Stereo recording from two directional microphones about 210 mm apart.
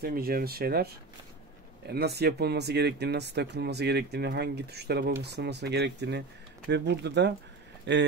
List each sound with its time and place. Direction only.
0.0 s speech: 45° right (ahead or behind)